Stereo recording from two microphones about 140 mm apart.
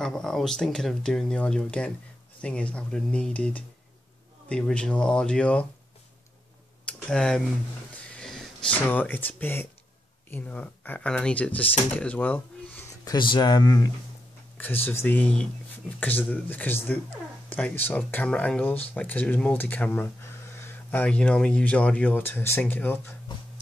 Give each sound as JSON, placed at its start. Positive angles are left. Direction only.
{"t": 0.0, "sound": "speech", "side_deg": 5}
{"t": 6.9, "sound": "speech", "side_deg": 5}
{"t": 7.9, "sound": "a sound", "side_deg": 5}
{"t": 10.3, "sound": "speech", "side_deg": 10}
{"t": 13.0, "sound": "speech", "side_deg": 30}
{"t": 14.6, "sound": "speech", "side_deg": 15}